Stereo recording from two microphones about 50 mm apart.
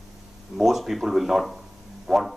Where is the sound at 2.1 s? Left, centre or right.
Centre.